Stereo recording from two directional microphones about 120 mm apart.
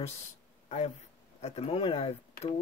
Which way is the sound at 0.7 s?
65° left (ahead or behind).